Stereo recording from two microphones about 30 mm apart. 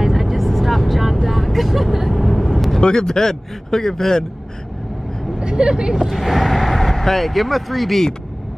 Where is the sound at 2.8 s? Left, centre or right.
Left.